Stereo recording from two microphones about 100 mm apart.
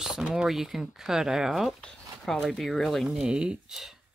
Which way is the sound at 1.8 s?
5° left (ahead or behind).